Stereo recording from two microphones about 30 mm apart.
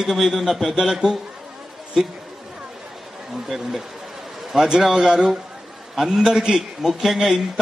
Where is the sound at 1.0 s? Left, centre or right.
Right.